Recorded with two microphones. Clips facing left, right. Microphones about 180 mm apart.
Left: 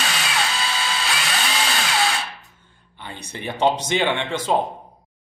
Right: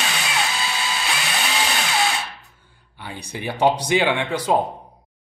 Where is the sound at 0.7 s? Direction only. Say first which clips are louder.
Even; 20° right (ahead or behind).